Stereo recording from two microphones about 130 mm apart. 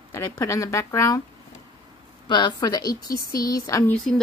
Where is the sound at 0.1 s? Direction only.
20° left (ahead or behind).